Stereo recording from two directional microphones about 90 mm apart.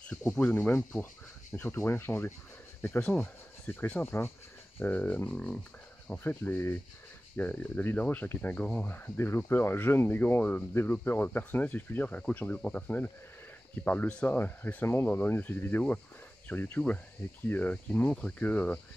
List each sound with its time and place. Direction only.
0.0 s speech: 10° left (ahead or behind)